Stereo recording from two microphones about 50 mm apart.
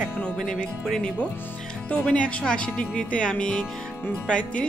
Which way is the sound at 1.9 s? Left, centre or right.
Left.